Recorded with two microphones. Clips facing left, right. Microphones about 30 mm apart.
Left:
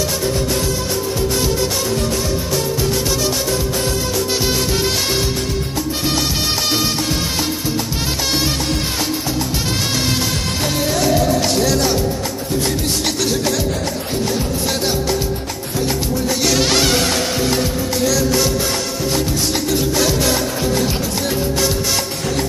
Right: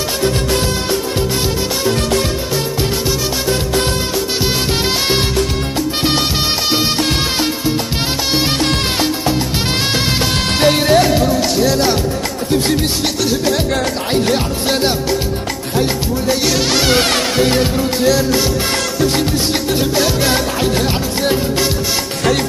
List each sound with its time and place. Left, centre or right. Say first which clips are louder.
0.2 s music: right 3 dB; right
4.1 s music: right 1 dB; centre
4.6 s music: right 3 dB; right
10.6 s music: right 9 dB; right
11.5 s music: right 2 dB; centre
13.0 s music: right 2 dB; centre
14.1 s music: right 6 dB; right
14.7 s music: right 6 dB; right
16.4 s music: left 2 dB; centre
17.0 s music: right 4 dB; right
17.6 s music: right 3 dB; right
20.0 s music: right 2 dB; centre
20.7 s music: right 2 dB; right